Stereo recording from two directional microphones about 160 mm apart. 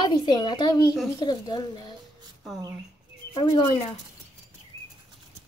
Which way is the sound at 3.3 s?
25° left (ahead or behind).